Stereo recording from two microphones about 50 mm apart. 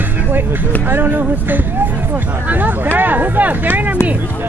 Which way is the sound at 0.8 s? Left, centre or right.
Right.